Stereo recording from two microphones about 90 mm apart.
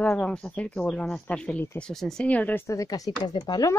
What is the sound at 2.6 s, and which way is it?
Speech, 40° left (ahead or behind).